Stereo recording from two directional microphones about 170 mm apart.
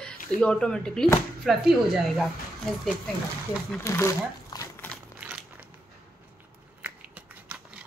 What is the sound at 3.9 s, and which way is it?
Crumpling, 15° left (ahead or behind).